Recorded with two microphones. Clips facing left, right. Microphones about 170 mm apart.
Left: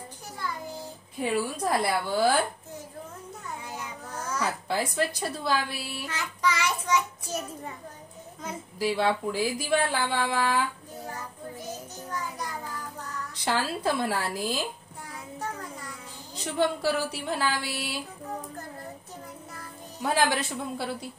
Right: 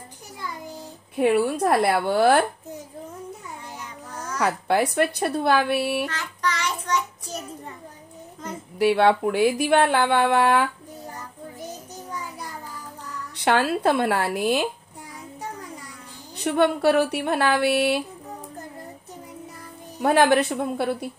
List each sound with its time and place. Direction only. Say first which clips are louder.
1.1 s speech: right 8 dB; 60° right (ahead or behind)
4.4 s speech: right 8 dB; 65° right (ahead or behind)
6.0 s child singing: right 1 dB; 10° left (ahead or behind)
8.7 s speech: right 8 dB; 65° right (ahead or behind)
12.1 s child singing: left 1 dB; 10° right (ahead or behind)
13.4 s speech: right 8 dB; 65° right (ahead or behind)
16.3 s speech: right 6 dB; 65° right (ahead or behind)
20.0 s speech: right 8 dB; 60° right (ahead or behind)